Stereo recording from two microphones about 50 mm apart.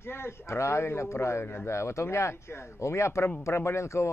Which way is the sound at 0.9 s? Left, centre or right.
Left.